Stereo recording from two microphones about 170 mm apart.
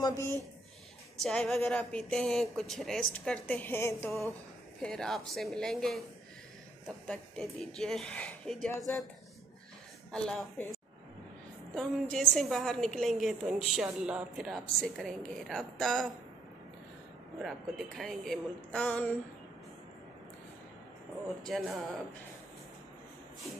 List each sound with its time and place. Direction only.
0.0 s speech: 20° left (ahead or behind)
1.2 s a woman's voice: 5° left (ahead or behind)
7.1 s a woman's voice: 5° left (ahead or behind)
10.1 s a woman's voice: 5° left (ahead or behind)
11.7 s a woman's voice: 5° left (ahead or behind)
17.4 s a woman's voice: centre (ahead or behind)
21.4 s a woman's voice: 5° left (ahead or behind)